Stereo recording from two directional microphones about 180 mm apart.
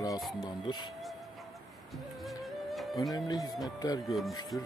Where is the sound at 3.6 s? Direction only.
20° left (ahead or behind).